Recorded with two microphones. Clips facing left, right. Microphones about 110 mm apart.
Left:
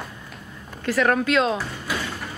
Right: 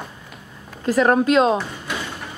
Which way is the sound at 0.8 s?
25° right (ahead or behind).